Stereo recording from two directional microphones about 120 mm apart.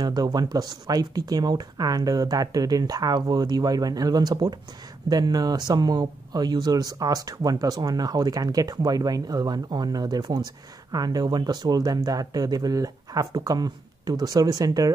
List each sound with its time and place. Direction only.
0.0 s speech: 35° right (ahead or behind)